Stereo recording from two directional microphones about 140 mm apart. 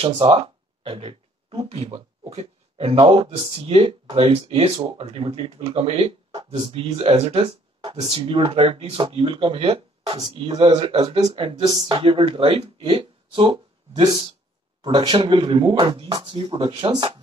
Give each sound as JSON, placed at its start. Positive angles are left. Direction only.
{"t": 0.0, "sound": "speech", "side_deg": -40}